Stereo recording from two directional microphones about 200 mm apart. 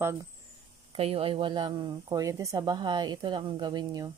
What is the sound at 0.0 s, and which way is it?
Speech, 15° right (ahead or behind).